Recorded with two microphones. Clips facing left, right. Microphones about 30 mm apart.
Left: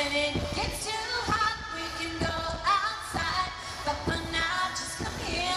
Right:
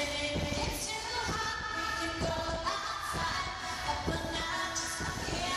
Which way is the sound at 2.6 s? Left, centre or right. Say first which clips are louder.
Left 7 dB; left.